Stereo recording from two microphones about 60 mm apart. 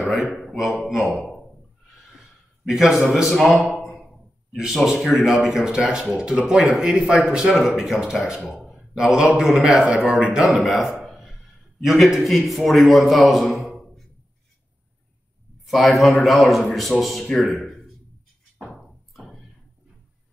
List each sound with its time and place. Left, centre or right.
0.0 s a man's voice: centre
2.7 s a man's voice: centre
4.8 s speech: centre
8.7 s a sound: centre
9.4 s speech: centre
10.4 s a sound: centre
11.8 s a man's voice: centre
15.6 s a man's voice: centre
18.6 s music: centre